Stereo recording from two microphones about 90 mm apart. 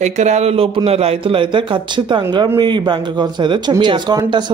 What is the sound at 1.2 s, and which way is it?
Speech, 70° right (ahead or behind).